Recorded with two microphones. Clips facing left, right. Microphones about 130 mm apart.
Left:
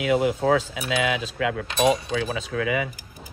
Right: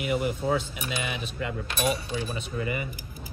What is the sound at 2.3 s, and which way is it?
Speech, 90° left.